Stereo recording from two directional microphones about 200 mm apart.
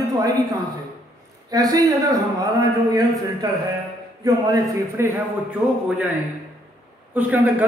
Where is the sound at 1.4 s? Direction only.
15° right (ahead or behind).